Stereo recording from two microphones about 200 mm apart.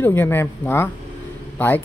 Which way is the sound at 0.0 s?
10° left (ahead or behind).